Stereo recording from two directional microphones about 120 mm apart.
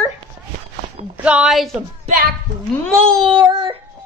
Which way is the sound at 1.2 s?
10° right (ahead or behind).